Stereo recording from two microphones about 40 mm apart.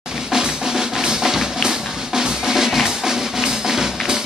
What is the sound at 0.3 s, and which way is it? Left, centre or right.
Drum, centre.